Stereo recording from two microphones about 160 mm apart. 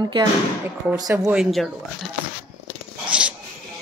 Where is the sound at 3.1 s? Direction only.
5° right (ahead or behind).